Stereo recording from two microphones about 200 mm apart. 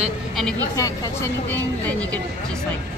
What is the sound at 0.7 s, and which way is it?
Speech, 15° left (ahead or behind).